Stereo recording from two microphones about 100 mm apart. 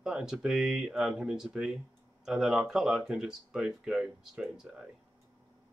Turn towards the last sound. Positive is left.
turn(degrees=-5)  # may be behind; listen again after turning